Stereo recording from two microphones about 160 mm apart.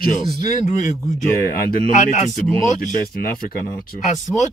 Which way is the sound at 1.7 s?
60° left (ahead or behind).